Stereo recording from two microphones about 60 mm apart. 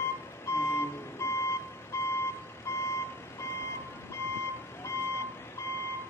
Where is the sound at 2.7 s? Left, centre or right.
Left.